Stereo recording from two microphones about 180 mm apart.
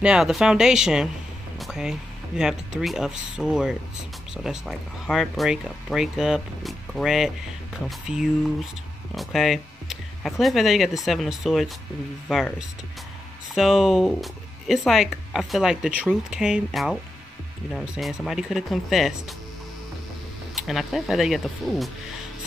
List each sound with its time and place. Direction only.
0.0 s speech: 5° right (ahead or behind)
20.5 s speech: centre (ahead or behind)